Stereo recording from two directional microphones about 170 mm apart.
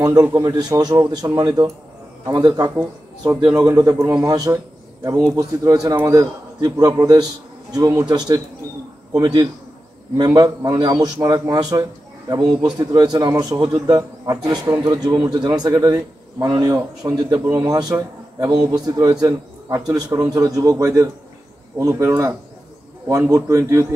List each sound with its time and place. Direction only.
0.0 s a man's voice: 20° right (ahead or behind)